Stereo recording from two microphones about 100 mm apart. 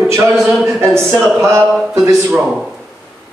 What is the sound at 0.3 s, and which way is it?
Speech, centre (ahead or behind).